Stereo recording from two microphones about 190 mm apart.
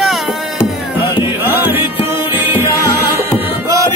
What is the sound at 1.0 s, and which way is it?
Music, 25° left (ahead or behind).